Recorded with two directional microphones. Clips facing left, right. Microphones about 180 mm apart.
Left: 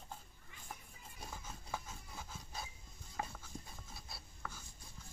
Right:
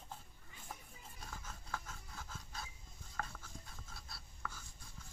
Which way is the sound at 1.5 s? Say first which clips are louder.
Left 1 dB; 15° left (ahead or behind).